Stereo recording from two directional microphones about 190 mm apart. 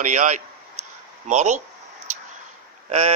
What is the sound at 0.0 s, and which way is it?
Speech, 40° right (ahead or behind).